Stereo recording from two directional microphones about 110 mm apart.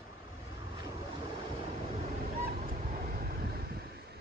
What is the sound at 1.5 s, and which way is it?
Vehicle, 90° right.